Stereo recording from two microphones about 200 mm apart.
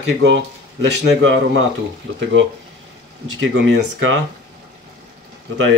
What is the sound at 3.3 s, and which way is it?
Speech, 65° right (ahead or behind).